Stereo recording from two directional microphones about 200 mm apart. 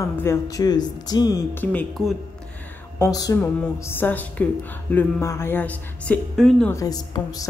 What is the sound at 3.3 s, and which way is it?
A woman's voice, 10° left (ahead or behind).